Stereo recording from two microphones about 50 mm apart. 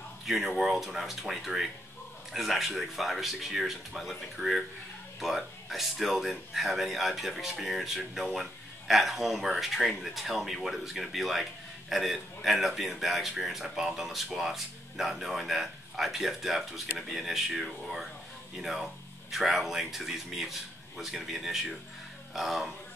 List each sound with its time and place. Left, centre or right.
0.3 s speech: centre